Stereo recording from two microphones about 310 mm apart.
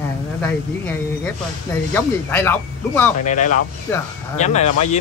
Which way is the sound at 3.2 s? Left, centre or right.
Left.